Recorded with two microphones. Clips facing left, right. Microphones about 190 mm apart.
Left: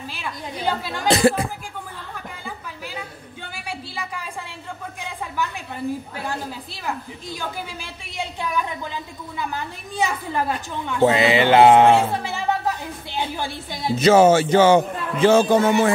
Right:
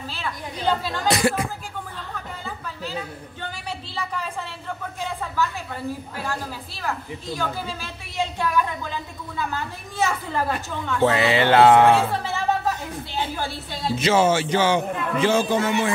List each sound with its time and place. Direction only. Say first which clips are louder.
0.1 s a woman's voice: even; 15° left (ahead or behind)
1.0 s speech: left 5 dB; 30° left (ahead or behind)
2.4 s a sound: right 2 dB; 10° left (ahead or behind)
6.1 s a woman's voice: left 1 dB; 15° left (ahead or behind)
13.9 s a man's voice: left 6 dB; 40° left (ahead or behind)